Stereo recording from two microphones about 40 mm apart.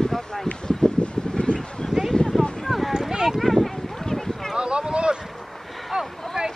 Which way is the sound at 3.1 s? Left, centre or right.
Centre.